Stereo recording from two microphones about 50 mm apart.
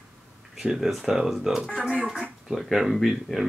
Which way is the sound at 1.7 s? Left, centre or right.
Centre.